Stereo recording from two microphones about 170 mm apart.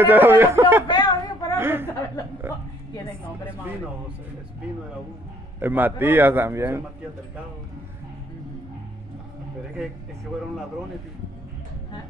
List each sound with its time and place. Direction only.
0.0 s a man's voice: 10° right (ahead or behind)
0.8 s a woman's voice: 25° left (ahead or behind)
1.6 s a man's voice: 15° right (ahead or behind)
5.6 s a man's voice: 10° right (ahead or behind)